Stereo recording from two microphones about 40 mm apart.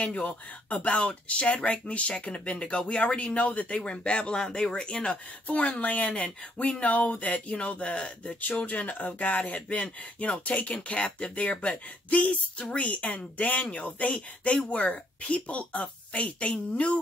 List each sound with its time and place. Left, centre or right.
0.0 s speech: left
5.1 s speech: left
8.4 s speech: left